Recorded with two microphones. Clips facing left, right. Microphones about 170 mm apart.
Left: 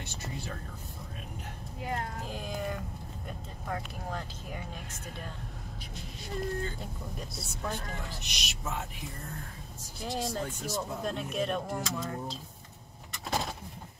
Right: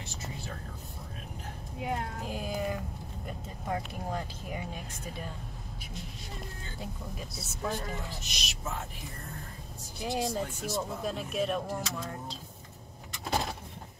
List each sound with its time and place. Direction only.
0.0 s whispering: centre (ahead or behind)
1.8 s speech: centre (ahead or behind)
6.8 s speech: centre (ahead or behind)
9.9 s speech: centre (ahead or behind)
13.1 s a sound: centre (ahead or behind)